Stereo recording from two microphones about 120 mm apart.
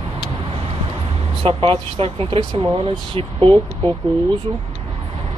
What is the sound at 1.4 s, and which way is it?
Speech, 50° right (ahead or behind).